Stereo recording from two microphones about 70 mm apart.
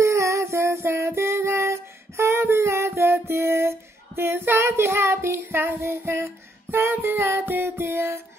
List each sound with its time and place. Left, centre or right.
0.0 s music: right